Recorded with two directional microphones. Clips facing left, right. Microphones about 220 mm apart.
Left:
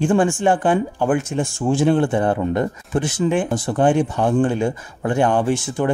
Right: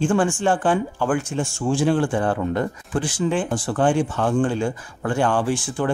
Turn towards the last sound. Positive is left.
turn(degrees=20)  # may be behind; listen again after turning